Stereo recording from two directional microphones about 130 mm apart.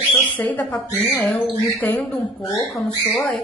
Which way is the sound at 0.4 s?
10° left (ahead or behind).